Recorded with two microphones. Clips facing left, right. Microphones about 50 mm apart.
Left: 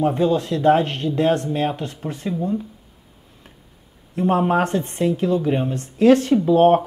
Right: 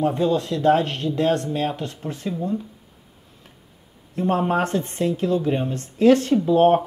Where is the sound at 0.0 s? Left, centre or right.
Centre.